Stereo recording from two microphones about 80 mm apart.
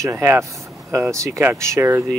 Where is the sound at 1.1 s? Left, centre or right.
Right.